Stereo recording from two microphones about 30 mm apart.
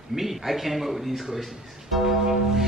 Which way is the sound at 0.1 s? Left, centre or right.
Centre.